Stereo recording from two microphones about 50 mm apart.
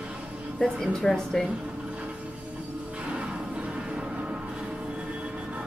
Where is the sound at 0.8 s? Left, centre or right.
Centre.